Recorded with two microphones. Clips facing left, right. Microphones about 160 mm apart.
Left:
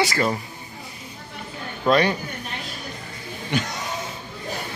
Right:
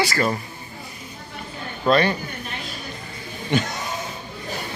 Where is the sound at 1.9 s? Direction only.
10° left (ahead or behind).